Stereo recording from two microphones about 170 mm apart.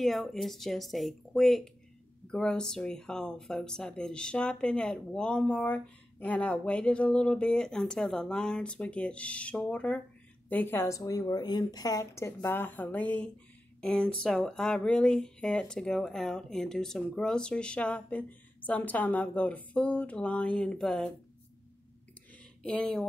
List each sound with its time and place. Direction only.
0.0 s speech: centre (ahead or behind)
22.6 s speech: 5° left (ahead or behind)